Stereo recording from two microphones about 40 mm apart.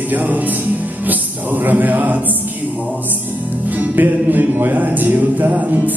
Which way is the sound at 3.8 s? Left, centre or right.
Right.